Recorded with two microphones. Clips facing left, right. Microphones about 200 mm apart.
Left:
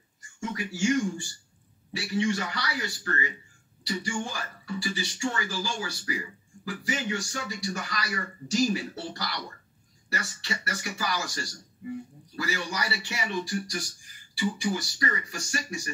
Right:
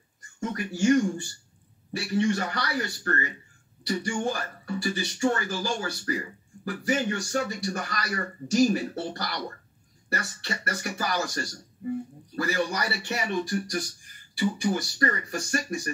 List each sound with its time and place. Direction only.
0.4 s a man's voice: 55° right (ahead or behind)